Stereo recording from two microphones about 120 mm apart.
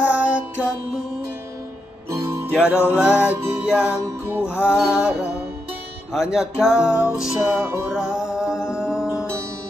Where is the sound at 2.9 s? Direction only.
10° right (ahead or behind).